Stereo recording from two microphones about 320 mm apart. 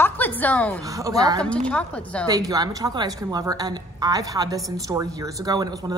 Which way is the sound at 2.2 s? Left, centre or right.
Centre.